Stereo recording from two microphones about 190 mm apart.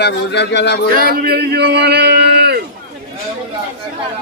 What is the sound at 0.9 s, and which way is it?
Speech, 50° right (ahead or behind).